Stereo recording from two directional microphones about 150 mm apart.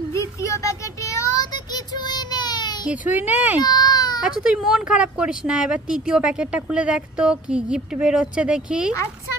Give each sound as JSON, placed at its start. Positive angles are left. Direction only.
{"t": 0.1, "sound": "child singing", "side_deg": 20}
{"t": 3.1, "sound": "speech", "side_deg": -10}
{"t": 3.6, "sound": "baby cry", "side_deg": 25}
{"t": 4.2, "sound": "speech", "side_deg": -5}